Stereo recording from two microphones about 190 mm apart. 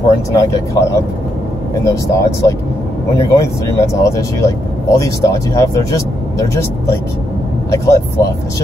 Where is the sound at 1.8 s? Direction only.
15° left (ahead or behind).